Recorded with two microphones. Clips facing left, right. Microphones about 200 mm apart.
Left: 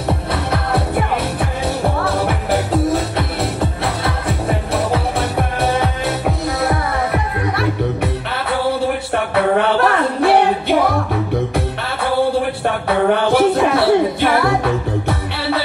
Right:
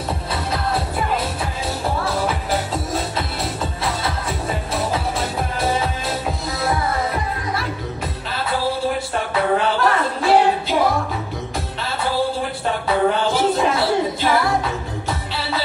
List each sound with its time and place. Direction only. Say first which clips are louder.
0.3 s music: left 1 dB; 65° left (ahead or behind)
12.6 s music: left 1 dB; 60° left (ahead or behind)